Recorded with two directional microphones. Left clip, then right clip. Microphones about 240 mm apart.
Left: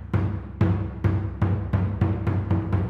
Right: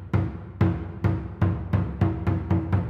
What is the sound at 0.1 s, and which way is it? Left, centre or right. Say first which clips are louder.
Music: even; right.